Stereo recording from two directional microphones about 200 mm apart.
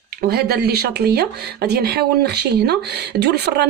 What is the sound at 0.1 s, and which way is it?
Speech, 50° right (ahead or behind).